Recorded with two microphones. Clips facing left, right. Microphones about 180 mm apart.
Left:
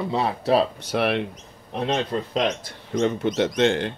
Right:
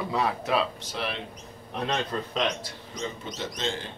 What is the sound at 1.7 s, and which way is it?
Speech, 30° left (ahead or behind).